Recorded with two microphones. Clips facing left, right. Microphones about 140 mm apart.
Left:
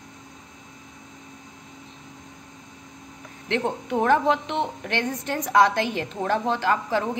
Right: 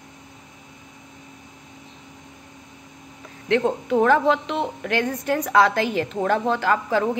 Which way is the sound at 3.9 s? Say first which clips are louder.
Right 2 dB; 20° left (ahead or behind).